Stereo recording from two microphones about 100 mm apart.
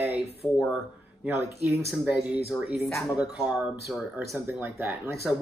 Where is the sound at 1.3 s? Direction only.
25° right (ahead or behind).